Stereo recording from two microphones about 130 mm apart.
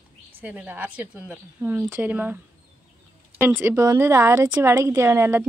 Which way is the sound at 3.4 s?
15° right (ahead or behind).